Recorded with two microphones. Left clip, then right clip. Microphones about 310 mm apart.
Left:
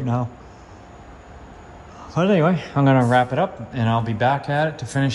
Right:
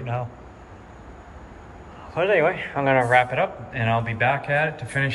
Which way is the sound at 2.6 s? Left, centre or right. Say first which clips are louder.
Left 1 dB; centre.